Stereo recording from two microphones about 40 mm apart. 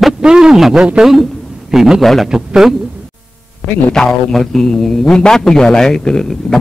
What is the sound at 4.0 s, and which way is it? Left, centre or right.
A man's voice, centre.